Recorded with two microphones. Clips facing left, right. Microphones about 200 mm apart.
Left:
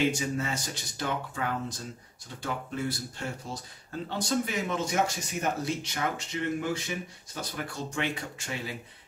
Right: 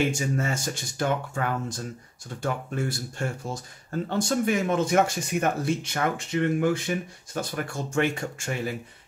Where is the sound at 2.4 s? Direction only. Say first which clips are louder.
Right 4 dB; 50° right (ahead or behind).